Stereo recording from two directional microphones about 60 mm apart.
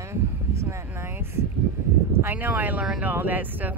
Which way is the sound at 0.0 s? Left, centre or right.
Right.